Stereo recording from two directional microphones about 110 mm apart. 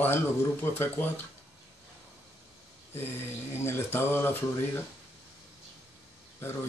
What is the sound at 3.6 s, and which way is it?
Speech, 20° left (ahead or behind).